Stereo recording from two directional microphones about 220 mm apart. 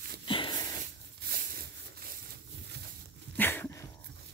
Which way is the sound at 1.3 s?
40° right (ahead or behind).